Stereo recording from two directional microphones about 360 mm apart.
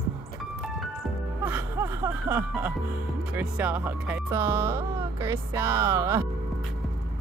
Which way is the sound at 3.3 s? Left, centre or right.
Centre.